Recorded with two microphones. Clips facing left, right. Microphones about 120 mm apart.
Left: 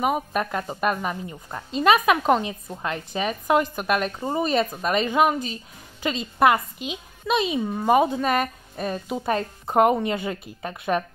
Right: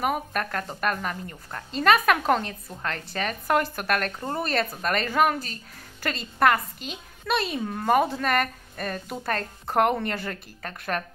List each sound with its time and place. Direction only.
0.0 s speech: 5° left (ahead or behind)